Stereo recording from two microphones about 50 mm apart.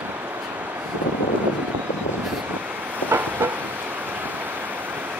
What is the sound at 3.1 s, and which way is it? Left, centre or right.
Train, right.